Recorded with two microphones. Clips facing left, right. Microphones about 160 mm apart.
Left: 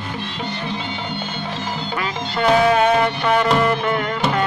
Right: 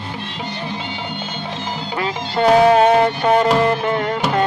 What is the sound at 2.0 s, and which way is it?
Music, 35° right (ahead or behind).